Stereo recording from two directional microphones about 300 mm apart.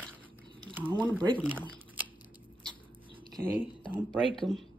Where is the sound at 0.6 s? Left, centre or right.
Centre.